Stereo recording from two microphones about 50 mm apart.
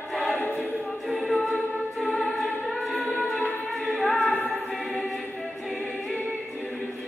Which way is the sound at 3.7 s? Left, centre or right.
Centre.